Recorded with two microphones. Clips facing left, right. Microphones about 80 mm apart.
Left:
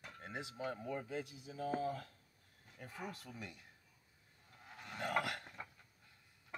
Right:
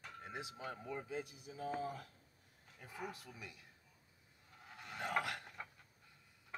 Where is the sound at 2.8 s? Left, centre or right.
Centre.